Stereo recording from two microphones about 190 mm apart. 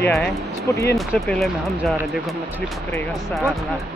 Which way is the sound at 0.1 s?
Centre (ahead or behind).